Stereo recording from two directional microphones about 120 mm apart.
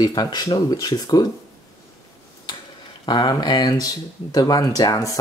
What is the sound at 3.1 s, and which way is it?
Speech, 40° left (ahead or behind).